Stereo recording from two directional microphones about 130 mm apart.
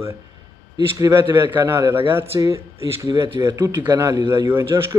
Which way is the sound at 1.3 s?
20° right (ahead or behind).